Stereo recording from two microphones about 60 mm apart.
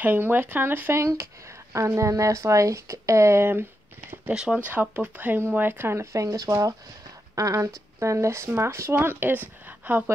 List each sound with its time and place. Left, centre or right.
0.0 s speech: right
0.9 s a sound: right
2.0 s speech: right
4.3 s speech: centre
4.6 s speech: right
6.1 s speech: right
9.2 s speech: right